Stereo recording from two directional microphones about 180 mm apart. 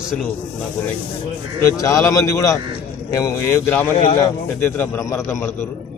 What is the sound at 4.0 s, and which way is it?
Speech, 35° left (ahead or behind).